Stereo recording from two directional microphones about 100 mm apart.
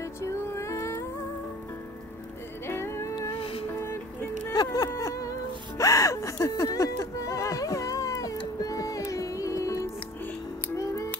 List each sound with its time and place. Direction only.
0.0 s music: 30° left (ahead or behind)
2.6 s music: 25° left (ahead or behind)
3.3 s music: 65° left (ahead or behind)
3.7 s music: 20° left (ahead or behind)
4.7 s a sound: 35° left (ahead or behind)
5.8 s music: 35° left (ahead or behind)